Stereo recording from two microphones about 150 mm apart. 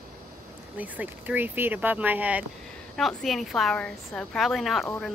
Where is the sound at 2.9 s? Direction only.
Centre (ahead or behind).